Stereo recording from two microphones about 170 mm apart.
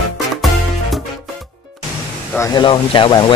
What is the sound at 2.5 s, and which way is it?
Speech, 30° left (ahead or behind).